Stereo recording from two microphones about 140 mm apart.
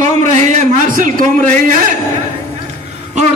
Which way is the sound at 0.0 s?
60° right (ahead or behind).